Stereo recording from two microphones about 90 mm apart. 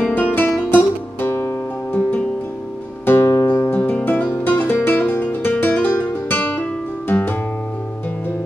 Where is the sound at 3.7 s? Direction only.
15° left (ahead or behind).